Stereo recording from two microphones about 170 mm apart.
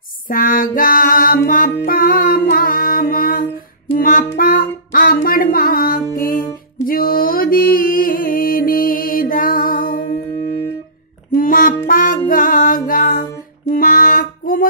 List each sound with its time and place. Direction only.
0.3 s music: 55° left (ahead or behind)
1.9 s mantra: 55° left (ahead or behind)
3.9 s music: 55° left (ahead or behind)
10.0 s music: 35° left (ahead or behind)
11.3 s music: 55° left (ahead or behind)